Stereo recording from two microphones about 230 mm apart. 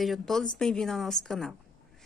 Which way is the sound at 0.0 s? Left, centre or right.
Centre.